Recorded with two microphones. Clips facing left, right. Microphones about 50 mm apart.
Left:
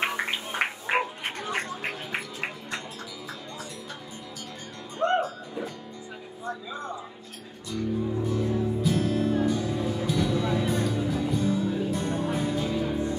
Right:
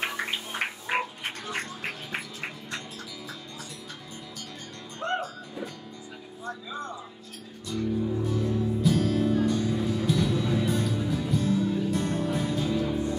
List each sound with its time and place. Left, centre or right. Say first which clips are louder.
0.0 s a sound: left 3 dB; left
5.0 s cattle: left 6 dB; centre
7.7 s music: even; centre
8.4 s music: left 2 dB; centre
8.6 s music: right 1 dB; centre